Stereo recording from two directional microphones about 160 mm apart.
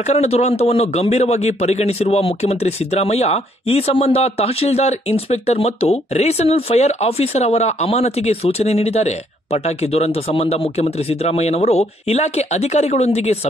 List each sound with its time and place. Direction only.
0.0 s speech: 45° left (ahead or behind)